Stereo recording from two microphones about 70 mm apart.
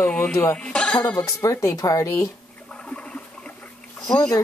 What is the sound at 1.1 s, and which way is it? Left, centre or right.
Speech, left.